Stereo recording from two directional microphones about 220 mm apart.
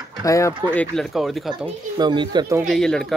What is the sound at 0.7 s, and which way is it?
Speech, 5° left (ahead or behind).